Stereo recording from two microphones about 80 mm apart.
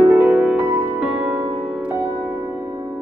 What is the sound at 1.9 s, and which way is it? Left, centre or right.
Music, right.